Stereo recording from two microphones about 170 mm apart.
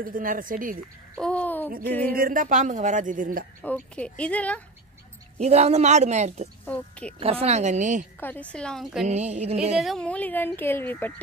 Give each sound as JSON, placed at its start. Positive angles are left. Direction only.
{"t": 0.0, "sound": "speech", "side_deg": -55}
{"t": 1.1, "sound": "a sound", "side_deg": 5}
{"t": 1.9, "sound": "a woman's voice", "side_deg": 10}
{"t": 2.1, "sound": "speech", "side_deg": -55}
{"t": 3.6, "sound": "a woman's voice", "side_deg": 10}
{"t": 5.4, "sound": "a woman's voice", "side_deg": -40}
{"t": 6.6, "sound": "a woman's voice", "side_deg": 10}
{"t": 7.2, "sound": "a woman's voice", "side_deg": -35}
{"t": 8.2, "sound": "a woman's voice", "side_deg": 10}
{"t": 9.0, "sound": "a woman's voice", "side_deg": -40}
{"t": 9.8, "sound": "a woman's voice", "side_deg": 0}